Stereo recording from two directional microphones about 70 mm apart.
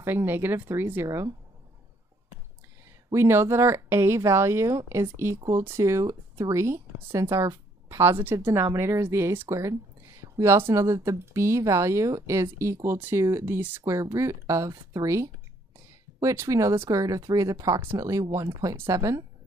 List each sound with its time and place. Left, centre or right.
0.0 s speech: right
1.0 s speech: right
3.1 s speech: right
13.6 s speech: right
13.8 s speech: right